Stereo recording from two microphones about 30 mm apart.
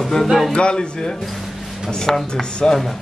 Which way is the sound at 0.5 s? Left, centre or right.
Left.